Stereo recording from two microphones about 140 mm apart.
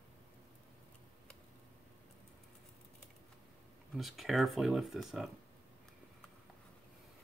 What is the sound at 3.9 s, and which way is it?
Speech, centre (ahead or behind).